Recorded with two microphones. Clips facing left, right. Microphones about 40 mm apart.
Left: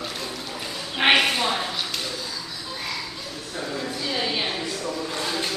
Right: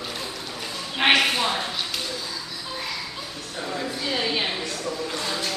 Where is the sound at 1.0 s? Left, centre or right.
Centre.